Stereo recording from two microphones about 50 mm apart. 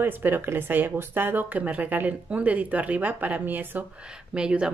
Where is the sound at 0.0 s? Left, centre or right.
Right.